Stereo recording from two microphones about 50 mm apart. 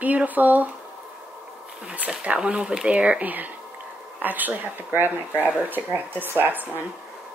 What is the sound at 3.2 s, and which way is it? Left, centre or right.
Speech, right.